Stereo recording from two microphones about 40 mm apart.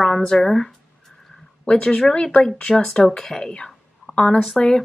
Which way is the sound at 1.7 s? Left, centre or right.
Left.